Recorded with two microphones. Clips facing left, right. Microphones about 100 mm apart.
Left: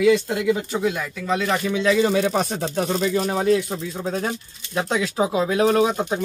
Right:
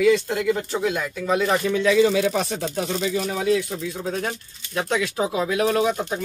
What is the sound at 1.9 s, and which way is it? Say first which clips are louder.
Speech: right 1 dB; 40° left (ahead or behind).